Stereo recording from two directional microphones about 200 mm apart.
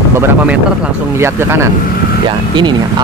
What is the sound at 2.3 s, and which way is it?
Speech, 20° right (ahead or behind).